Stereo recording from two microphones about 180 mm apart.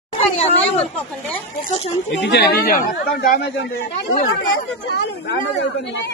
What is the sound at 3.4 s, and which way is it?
A man's voice, 80° left.